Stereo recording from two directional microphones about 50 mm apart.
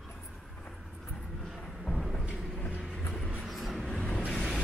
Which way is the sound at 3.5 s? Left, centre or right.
Centre.